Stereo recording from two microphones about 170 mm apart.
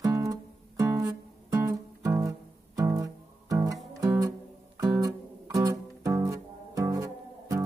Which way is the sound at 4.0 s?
20° right (ahead or behind).